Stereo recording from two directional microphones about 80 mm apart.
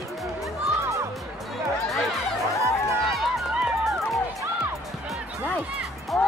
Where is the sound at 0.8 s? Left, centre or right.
Right.